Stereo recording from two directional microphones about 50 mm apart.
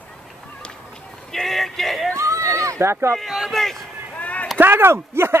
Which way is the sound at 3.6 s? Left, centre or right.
Centre.